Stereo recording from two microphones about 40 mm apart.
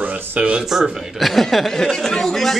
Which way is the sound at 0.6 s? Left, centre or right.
Centre.